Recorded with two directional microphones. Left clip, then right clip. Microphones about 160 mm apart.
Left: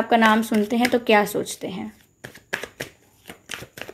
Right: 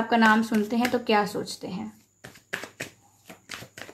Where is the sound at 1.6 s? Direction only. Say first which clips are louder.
Left 5 dB; 35° left (ahead or behind).